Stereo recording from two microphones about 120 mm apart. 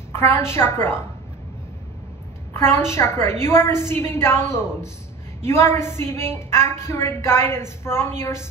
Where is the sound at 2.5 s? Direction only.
20° left (ahead or behind).